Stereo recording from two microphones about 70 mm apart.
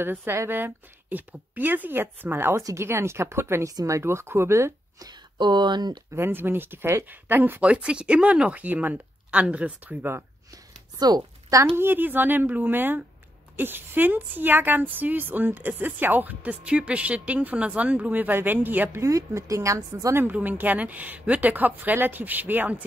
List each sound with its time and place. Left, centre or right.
0.0 s a woman's voice: right
3.6 s speech: right
4.9 s speech: right
6.1 s a woman's voice: right
7.6 s speech: centre
11.0 s speech: right
11.5 s a woman's voice: right
18.9 s speech: right
20.3 s a woman's voice: right